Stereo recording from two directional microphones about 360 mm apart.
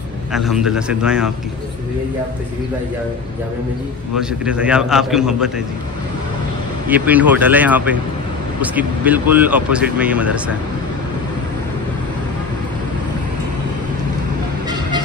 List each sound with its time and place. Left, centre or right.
0.3 s speech: centre
4.2 s speech: centre
6.9 s speech: centre